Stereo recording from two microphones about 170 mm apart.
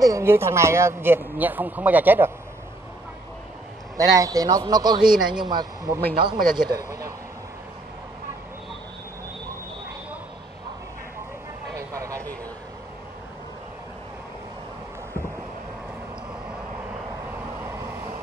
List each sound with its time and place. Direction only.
0.0 s speech: 15° right (ahead or behind)
3.9 s a man's voice: 20° right (ahead or behind)
11.7 s vehicle: 20° right (ahead or behind)
17.6 s vehicle: 15° right (ahead or behind)